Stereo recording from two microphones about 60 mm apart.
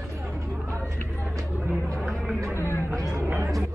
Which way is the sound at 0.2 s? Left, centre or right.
Right.